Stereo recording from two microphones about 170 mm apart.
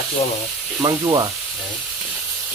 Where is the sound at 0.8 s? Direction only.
20° right (ahead or behind).